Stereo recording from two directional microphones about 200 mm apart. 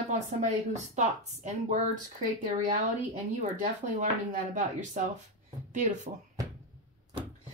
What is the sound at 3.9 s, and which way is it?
Speech, 40° right (ahead or behind).